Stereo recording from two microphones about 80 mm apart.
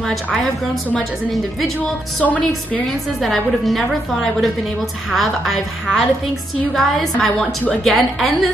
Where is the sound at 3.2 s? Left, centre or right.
Centre.